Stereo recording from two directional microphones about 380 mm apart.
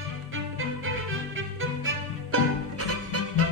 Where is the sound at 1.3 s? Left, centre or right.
Right.